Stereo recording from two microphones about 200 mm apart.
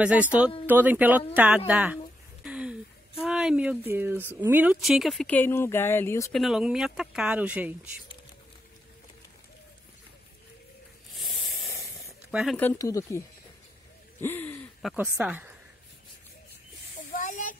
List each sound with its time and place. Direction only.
0.0 s speech: 5° right (ahead or behind)
2.4 s a sound: 5° right (ahead or behind)
3.3 s speech: 5° right (ahead or behind); by 6.3 s 15° left (ahead or behind)
6.3 s speech: centre (ahead or behind)
11.1 s spray: centre (ahead or behind)
11.7 s snake: 15° right (ahead or behind)
12.5 s speech: 10° left (ahead or behind)
14.2 s speech: 10° left (ahead or behind)
15.0 s speech: 10° right (ahead or behind)
17.1 s a sound: 40° left (ahead or behind)